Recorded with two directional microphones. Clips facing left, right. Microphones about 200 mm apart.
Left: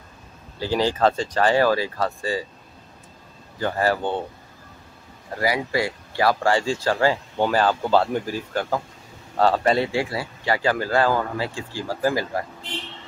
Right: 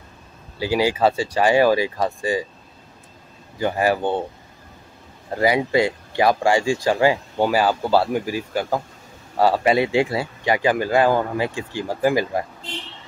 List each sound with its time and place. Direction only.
0.6 s speech: 10° right (ahead or behind)
3.5 s speech: 15° right (ahead or behind)
5.3 s speech: 20° right (ahead or behind)